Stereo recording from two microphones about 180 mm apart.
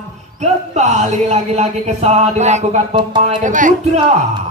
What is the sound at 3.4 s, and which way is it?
Speech, 45° right (ahead or behind).